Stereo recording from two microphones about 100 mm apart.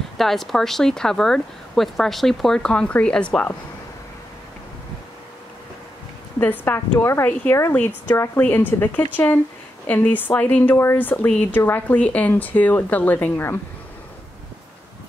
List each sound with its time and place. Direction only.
0.2 s speech: centre (ahead or behind)
6.6 s a woman's voice: 20° left (ahead or behind)